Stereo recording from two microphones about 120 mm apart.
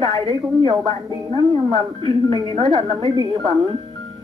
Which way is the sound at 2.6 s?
35° right (ahead or behind).